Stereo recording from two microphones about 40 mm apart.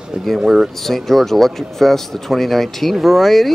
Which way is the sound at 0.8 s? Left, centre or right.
Centre.